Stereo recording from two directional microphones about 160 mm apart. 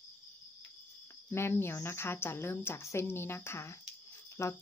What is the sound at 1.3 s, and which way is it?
A woman's voice, 15° left (ahead or behind).